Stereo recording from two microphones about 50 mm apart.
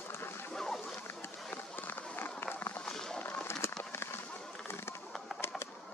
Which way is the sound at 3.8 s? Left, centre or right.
Left.